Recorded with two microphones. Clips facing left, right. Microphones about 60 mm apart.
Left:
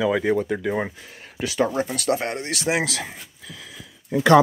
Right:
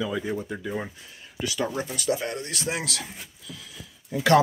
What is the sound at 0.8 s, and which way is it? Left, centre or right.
Speech, left.